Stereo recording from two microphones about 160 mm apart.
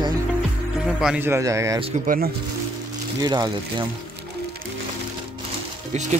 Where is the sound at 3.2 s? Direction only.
25° right (ahead or behind).